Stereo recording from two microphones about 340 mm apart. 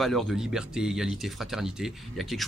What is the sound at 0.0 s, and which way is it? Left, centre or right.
Speech, centre.